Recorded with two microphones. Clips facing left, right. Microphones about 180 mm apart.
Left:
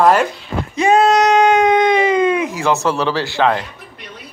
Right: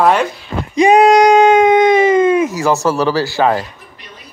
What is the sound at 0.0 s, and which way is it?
Speech, centre (ahead or behind).